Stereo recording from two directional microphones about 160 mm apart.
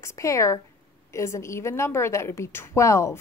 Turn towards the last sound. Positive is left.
turn(degrees=20)  # may be behind; listen again after turning